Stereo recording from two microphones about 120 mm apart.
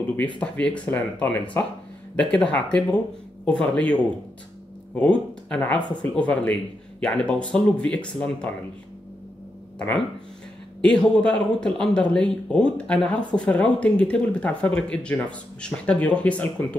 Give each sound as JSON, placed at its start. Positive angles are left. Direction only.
{"t": 0.4, "sound": "speech", "side_deg": 10}
{"t": 9.8, "sound": "speech", "side_deg": 10}